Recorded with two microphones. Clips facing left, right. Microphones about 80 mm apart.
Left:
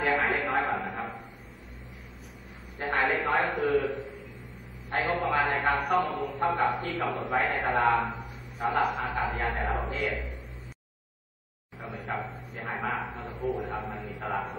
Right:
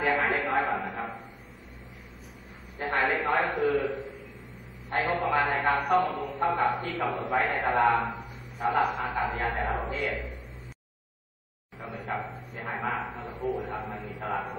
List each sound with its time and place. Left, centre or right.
0.0 s a sound: centre
2.8 s a man's voice: centre
11.9 s dog: centre
12.3 s bow-wow: centre
13.2 s a sound: right
13.5 s a man's voice: left